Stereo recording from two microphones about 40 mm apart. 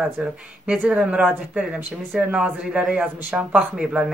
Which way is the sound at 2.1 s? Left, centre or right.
Centre.